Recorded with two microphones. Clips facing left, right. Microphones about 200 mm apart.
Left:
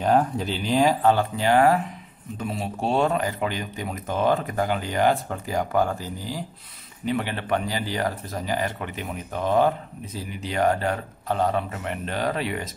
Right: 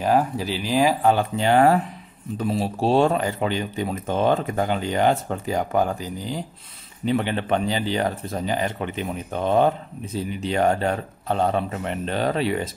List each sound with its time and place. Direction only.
0.0 s speech: 5° right (ahead or behind)
1.4 s speech: 25° right (ahead or behind)